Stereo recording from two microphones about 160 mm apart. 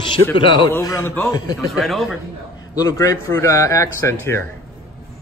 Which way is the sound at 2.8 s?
25° left (ahead or behind).